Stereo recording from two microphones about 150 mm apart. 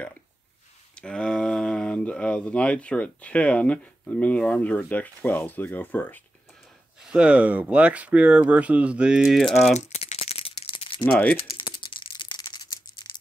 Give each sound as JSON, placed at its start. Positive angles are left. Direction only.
{"t": 0.9, "sound": "speech", "side_deg": 5}
{"t": 7.0, "sound": "speech", "side_deg": -5}
{"t": 9.8, "sound": "rattle", "side_deg": 45}
{"t": 11.1, "sound": "speech", "side_deg": 10}
{"t": 11.3, "sound": "rattle", "side_deg": 35}